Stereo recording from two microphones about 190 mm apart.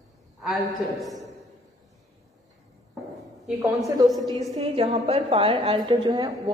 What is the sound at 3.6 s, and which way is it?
Speech, 15° right (ahead or behind).